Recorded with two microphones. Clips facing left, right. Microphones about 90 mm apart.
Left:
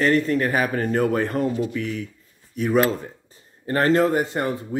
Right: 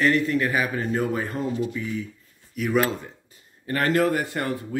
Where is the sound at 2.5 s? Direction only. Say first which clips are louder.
Left 3 dB; 35° left (ahead or behind).